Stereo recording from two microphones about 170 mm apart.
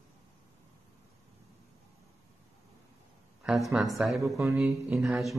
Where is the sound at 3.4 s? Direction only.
Centre (ahead or behind).